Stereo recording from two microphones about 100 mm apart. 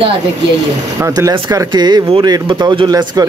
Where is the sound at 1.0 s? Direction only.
35° right (ahead or behind).